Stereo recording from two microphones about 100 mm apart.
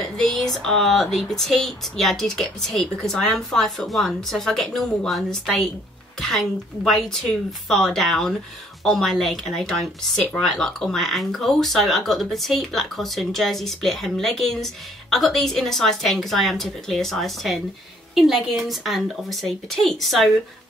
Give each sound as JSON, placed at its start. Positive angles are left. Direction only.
{"t": 0.0, "sound": "speech", "side_deg": 0}